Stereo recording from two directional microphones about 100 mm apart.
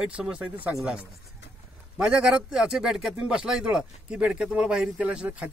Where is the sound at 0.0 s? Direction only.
10° right (ahead or behind).